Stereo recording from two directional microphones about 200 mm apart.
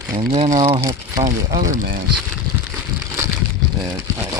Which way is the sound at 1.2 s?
40° right (ahead or behind).